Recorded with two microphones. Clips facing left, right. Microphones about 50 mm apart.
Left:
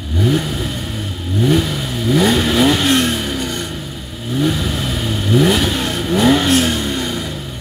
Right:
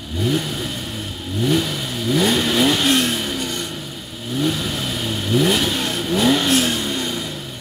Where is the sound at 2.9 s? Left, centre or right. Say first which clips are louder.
Left 3 dB; left.